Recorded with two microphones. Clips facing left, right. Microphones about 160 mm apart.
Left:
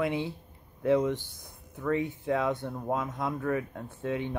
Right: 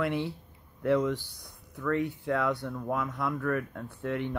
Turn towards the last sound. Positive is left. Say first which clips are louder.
# even
turn(degrees=20)  # may be behind; listen again after turning